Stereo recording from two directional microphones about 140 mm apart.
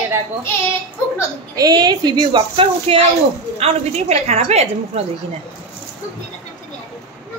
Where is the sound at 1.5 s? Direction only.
30° right (ahead or behind); by 5.0 s 45° right (ahead or behind).